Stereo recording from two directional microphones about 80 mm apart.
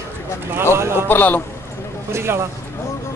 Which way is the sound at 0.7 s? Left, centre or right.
Right.